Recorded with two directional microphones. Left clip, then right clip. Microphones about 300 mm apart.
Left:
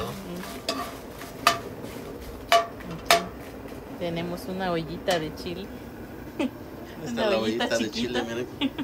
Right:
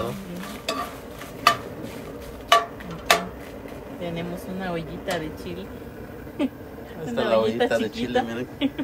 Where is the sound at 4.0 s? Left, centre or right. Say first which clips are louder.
Left 1 dB; left.